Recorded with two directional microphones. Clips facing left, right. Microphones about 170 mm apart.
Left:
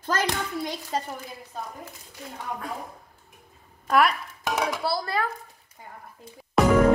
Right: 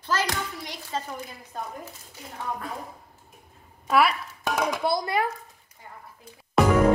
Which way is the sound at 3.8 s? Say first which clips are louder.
Even; 5° right (ahead or behind).